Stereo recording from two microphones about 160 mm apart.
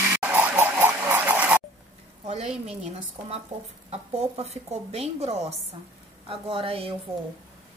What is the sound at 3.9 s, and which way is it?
Speech, 40° right (ahead or behind).